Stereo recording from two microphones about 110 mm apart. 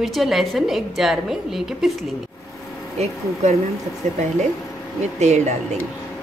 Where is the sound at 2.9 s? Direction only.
75° right (ahead or behind).